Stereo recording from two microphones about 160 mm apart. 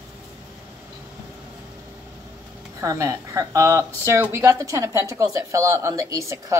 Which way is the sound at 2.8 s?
20° right (ahead or behind).